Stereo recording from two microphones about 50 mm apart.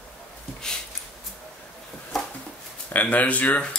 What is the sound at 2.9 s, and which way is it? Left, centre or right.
Speech, left.